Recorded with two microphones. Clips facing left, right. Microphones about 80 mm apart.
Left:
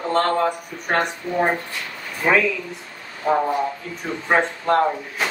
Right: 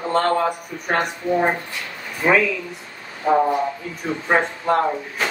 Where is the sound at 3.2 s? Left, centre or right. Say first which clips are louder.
Right 2 dB; right.